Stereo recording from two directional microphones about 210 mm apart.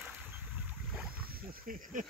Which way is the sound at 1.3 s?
40° right (ahead or behind).